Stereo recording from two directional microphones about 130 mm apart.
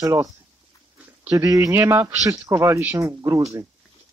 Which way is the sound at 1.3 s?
25° right (ahead or behind).